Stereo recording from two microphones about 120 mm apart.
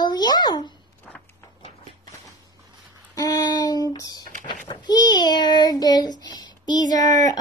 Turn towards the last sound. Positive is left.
turn(degrees=35)  # may be behind; listen again after turning